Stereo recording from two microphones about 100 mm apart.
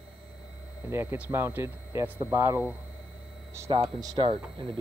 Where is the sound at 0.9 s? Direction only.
25° right (ahead or behind).